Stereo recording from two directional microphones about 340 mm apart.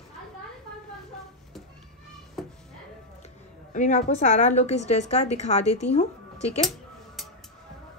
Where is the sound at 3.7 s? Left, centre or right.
Left.